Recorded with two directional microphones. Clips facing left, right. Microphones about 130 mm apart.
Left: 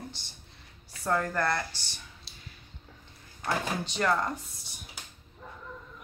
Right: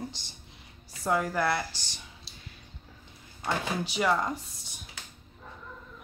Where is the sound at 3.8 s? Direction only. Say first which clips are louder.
Right 3 dB; 5° right (ahead or behind).